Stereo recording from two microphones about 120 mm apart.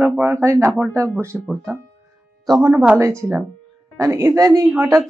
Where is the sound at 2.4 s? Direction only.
35° right (ahead or behind).